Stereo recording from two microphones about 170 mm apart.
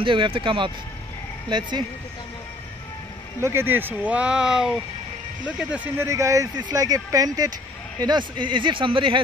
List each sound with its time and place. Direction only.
0.0 s speech: 30° right (ahead or behind)
3.4 s speech: 15° right (ahead or behind)
6.0 s speech: 20° right (ahead or behind)